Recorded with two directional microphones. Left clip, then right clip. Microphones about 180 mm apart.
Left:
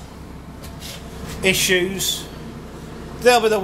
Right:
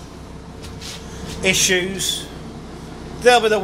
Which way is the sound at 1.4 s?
15° left (ahead or behind).